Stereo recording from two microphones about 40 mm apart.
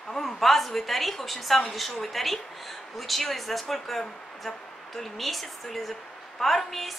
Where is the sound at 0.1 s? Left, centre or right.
Centre.